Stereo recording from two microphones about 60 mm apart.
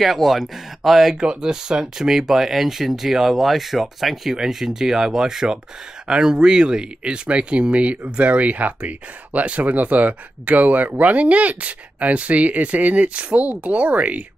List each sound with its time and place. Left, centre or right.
0.0 s speech: centre; by 14.2 s right